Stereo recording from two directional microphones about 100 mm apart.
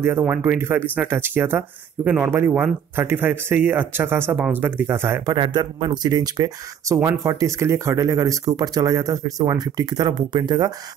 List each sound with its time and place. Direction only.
0.3 s a man's voice: 20° right (ahead or behind)
5.3 s speech: 45° right (ahead or behind)